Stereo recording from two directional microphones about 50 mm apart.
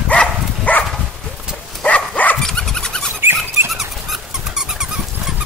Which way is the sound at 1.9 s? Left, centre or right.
Left.